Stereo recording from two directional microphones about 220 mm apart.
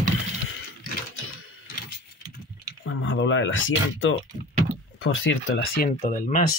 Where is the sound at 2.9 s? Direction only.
60° left (ahead or behind).